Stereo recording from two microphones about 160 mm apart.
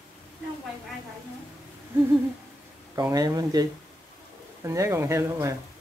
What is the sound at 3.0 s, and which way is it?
Speech, 20° right (ahead or behind).